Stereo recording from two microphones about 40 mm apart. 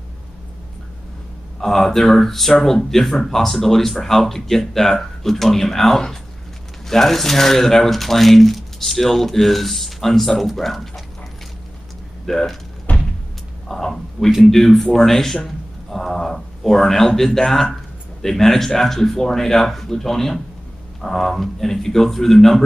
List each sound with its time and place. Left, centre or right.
1.6 s speech: centre
12.3 s speech: centre
12.9 s a sound: left
13.7 s a man's voice: centre